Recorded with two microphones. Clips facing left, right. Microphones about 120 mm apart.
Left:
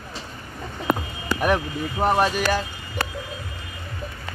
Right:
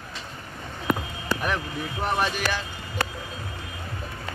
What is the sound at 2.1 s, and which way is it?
Speech, 40° left (ahead or behind).